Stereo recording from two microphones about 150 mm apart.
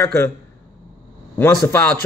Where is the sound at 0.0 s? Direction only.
15° left (ahead or behind).